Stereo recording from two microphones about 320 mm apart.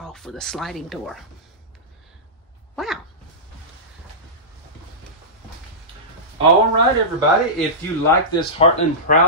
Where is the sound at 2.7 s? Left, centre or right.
Centre.